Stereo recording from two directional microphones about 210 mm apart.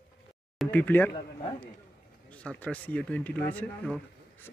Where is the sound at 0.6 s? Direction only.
5° left (ahead or behind).